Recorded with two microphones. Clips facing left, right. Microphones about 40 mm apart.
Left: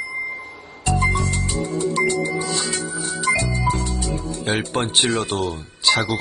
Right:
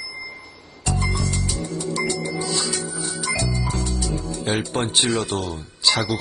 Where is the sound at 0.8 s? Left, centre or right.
Left.